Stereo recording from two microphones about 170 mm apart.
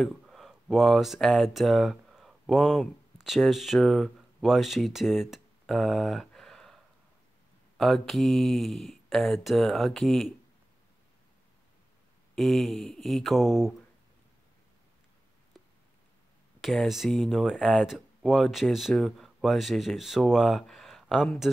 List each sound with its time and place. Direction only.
0.0 s speech: centre (ahead or behind)
12.4 s speech: centre (ahead or behind)
16.6 s speech: centre (ahead or behind)